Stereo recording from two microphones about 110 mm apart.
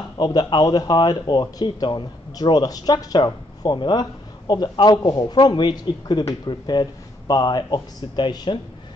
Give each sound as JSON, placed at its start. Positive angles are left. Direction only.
{"t": 0.2, "sound": "speech", "side_deg": 40}